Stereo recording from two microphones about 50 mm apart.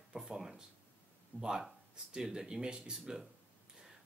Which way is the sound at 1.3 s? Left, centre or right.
Right.